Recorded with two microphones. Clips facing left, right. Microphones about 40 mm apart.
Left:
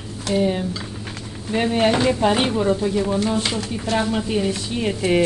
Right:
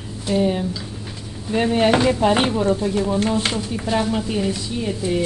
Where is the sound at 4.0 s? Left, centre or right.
Centre.